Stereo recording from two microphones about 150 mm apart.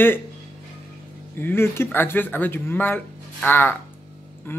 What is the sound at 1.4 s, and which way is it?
A man's voice, 15° left (ahead or behind).